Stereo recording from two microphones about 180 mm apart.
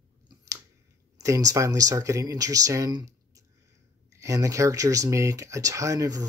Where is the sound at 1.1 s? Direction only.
15° right (ahead or behind).